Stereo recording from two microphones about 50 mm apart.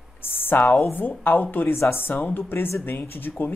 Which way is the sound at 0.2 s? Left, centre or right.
Left.